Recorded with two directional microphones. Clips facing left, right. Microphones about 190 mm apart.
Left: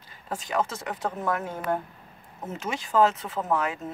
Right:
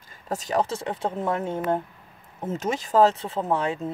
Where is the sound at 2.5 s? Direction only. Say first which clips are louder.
Right 4 dB; 40° right (ahead or behind).